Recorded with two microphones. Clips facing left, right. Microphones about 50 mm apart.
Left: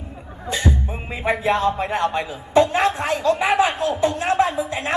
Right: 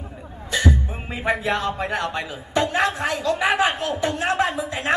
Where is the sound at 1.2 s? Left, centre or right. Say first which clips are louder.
Left 3 dB; left.